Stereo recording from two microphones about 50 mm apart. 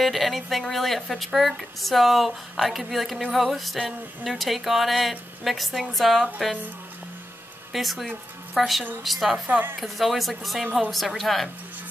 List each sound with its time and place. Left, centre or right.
0.0 s speech: centre
7.7 s speech: centre
9.5 s speech: right
9.8 s speech: centre